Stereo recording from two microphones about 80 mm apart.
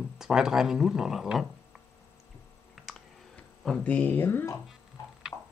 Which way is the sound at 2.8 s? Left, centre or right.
Centre.